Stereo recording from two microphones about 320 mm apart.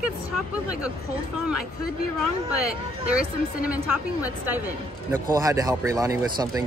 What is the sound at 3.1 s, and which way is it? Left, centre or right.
Speech, centre.